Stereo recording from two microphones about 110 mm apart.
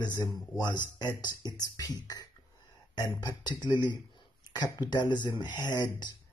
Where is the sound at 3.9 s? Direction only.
40° left (ahead or behind).